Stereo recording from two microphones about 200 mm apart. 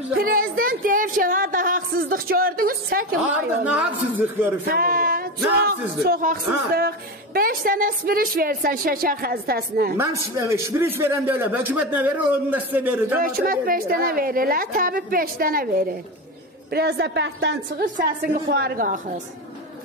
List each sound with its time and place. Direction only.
0.2 s a woman's voice: 45° right (ahead or behind)
3.3 s a man's voice: 5° right (ahead or behind)
4.6 s male singing: 45° right (ahead or behind)
6.0 s a woman's voice: 45° right (ahead or behind)
10.3 s a man's voice: 15° right (ahead or behind)
13.2 s a woman's voice: 45° right (ahead or behind)
17.8 s a woman's voice: 45° right (ahead or behind)